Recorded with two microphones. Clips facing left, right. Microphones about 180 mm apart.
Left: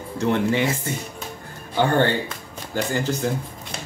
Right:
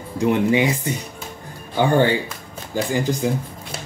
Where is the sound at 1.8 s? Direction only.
10° right (ahead or behind).